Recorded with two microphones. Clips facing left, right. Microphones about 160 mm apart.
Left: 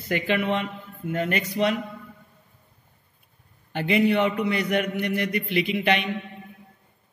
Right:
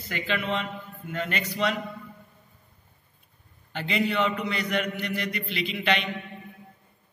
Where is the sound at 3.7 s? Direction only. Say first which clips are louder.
Left 6 dB; 55° left (ahead or behind).